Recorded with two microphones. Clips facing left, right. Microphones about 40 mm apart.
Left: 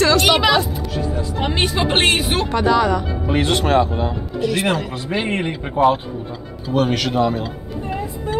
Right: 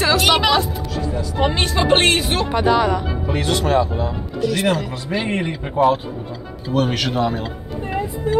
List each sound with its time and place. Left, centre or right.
0.0 s speech: centre
2.5 s speech: centre
3.3 s speech: left
4.0 s speech: left
6.7 s speech: centre